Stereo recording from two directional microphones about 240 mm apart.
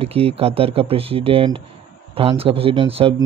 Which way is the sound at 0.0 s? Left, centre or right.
Right.